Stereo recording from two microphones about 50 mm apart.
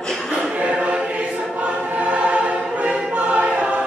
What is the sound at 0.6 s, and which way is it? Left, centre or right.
Choir, right.